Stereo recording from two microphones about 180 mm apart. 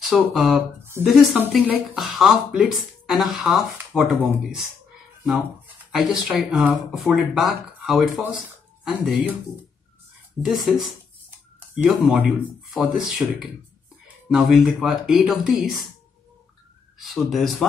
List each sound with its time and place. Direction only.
0.0 s speech: centre (ahead or behind)
5.9 s speech: centre (ahead or behind)
10.4 s speech: centre (ahead or behind)
17.1 s speech: centre (ahead or behind)